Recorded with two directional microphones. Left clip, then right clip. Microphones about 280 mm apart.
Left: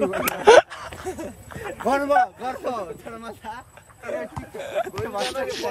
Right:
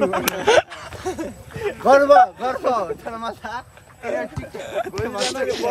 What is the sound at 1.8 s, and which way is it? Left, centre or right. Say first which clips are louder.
A man's voice: right 8 dB; centre.